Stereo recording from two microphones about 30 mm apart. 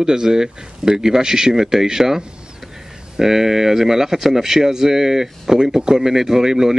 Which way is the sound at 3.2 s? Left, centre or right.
Centre.